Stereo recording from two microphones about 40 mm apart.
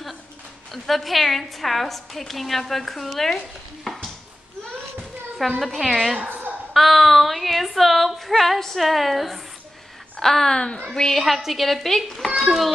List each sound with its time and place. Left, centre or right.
0.8 s a woman's voice: centre
5.6 s a woman's voice: centre
6.2 s a sound: right
6.7 s a woman's voice: centre
10.6 s a woman's voice: left
11.1 s a woman's voice: centre